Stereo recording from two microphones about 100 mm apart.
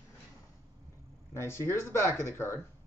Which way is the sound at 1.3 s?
25° left (ahead or behind).